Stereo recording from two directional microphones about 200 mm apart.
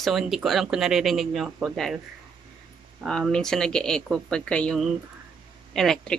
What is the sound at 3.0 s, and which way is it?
Speech, 5° left (ahead or behind).